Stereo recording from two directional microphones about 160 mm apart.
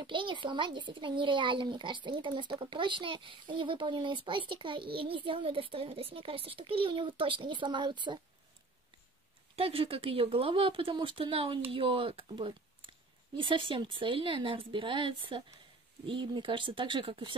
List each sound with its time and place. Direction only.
0.0 s speech: 30° right (ahead or behind)
9.6 s speech: 35° right (ahead or behind)